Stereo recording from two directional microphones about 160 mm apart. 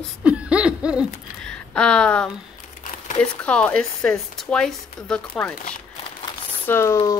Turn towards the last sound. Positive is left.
turn(degrees=20)  # may be behind; listen again after turning